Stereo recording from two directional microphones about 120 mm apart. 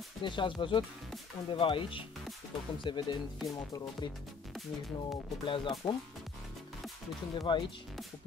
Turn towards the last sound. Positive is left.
turn(degrees=40)  # may be behind; listen again after turning